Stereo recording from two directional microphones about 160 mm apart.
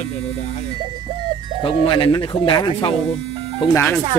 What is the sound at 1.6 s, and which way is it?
Speech, 30° left (ahead or behind).